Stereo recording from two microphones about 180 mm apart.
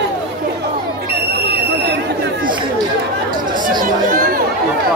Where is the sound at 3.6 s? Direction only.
50° right (ahead or behind).